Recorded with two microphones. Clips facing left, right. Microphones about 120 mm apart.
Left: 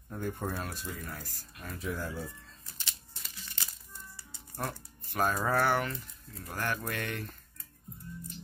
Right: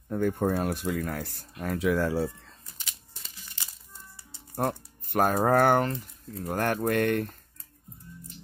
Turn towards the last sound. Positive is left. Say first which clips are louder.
# right 12 dB
turn(degrees=-55)  # may be behind; listen again after turning